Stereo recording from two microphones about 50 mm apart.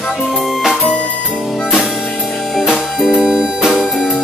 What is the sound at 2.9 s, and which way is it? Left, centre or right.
Music, centre.